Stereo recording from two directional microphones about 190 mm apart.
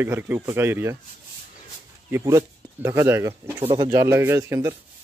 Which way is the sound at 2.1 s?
15° right (ahead or behind).